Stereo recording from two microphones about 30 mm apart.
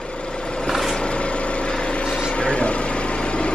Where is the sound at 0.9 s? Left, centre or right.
Left.